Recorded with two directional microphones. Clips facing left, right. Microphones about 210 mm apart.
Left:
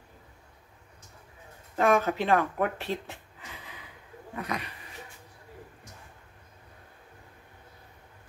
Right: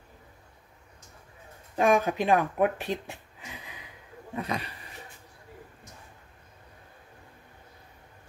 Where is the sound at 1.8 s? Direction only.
15° right (ahead or behind).